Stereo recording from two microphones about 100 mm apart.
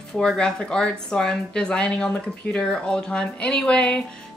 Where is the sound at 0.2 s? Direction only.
5° left (ahead or behind).